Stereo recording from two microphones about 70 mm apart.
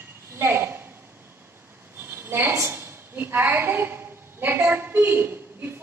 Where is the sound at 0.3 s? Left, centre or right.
Right.